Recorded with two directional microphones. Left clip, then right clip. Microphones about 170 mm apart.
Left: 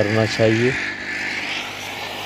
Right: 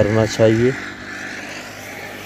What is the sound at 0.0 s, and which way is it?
Speech, 20° right (ahead or behind).